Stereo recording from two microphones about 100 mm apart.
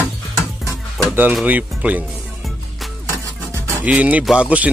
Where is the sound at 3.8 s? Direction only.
15° right (ahead or behind).